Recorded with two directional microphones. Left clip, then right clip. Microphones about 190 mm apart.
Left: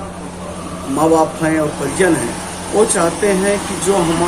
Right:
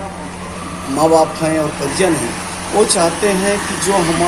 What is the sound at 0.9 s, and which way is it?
A man's voice, centre (ahead or behind).